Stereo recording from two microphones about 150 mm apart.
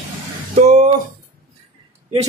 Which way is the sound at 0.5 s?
50° right (ahead or behind).